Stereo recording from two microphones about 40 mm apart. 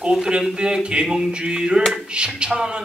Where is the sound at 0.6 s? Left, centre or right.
Right.